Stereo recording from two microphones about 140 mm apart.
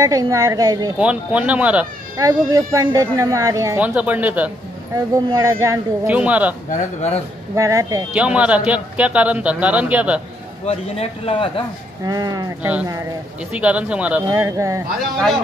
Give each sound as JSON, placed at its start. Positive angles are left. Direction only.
{"t": 0.0, "sound": "speech", "side_deg": -25}
{"t": 0.9, "sound": "a man's voice", "side_deg": -10}
{"t": 2.1, "sound": "speech", "side_deg": -25}
{"t": 3.8, "sound": "a man's voice", "side_deg": -10}
{"t": 4.9, "sound": "speech", "side_deg": -25}
{"t": 6.1, "sound": "a man's voice", "side_deg": -10}
{"t": 6.7, "sound": "a man's voice", "side_deg": 50}
{"t": 7.5, "sound": "speech", "side_deg": -25}
{"t": 8.1, "sound": "a man's voice", "side_deg": -10}
{"t": 10.7, "sound": "a man's voice", "side_deg": 45}
{"t": 12.1, "sound": "speech", "side_deg": -30}
{"t": 13.6, "sound": "a man's voice", "side_deg": -10}
{"t": 14.3, "sound": "speech", "side_deg": -20}